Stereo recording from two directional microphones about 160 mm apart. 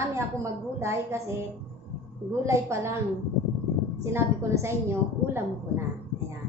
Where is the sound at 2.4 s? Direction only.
20° right (ahead or behind).